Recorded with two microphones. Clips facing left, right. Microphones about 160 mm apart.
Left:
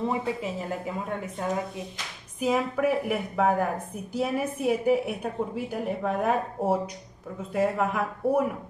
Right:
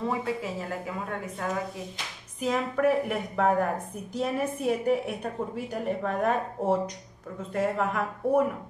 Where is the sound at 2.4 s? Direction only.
5° left (ahead or behind).